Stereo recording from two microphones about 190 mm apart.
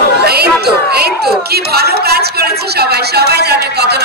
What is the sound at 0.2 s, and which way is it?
Chatter, 55° right (ahead or behind).